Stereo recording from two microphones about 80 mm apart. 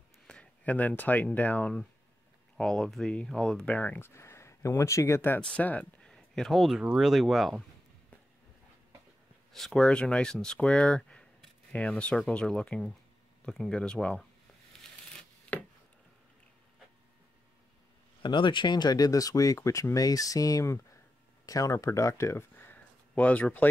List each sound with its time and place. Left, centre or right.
0.3 s speech: centre
2.5 s speech: centre; by 4.1 s left
4.1 s speech: left
5.4 s speech: centre
6.0 s a sound: centre
6.8 s speech: centre
9.5 s speech: centre
18.2 s speech: left; by 23.7 s centre